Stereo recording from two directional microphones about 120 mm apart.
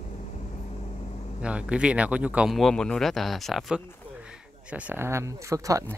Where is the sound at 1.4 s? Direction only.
10° right (ahead or behind).